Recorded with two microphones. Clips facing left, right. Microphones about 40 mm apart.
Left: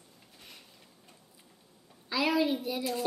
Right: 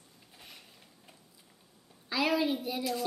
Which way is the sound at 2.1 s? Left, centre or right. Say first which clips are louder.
Left 1 dB; centre.